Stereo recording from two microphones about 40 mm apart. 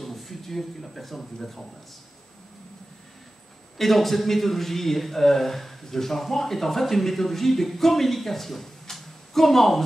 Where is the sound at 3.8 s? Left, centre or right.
Centre.